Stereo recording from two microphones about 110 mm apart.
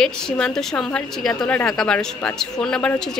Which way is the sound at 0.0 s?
5° left (ahead or behind).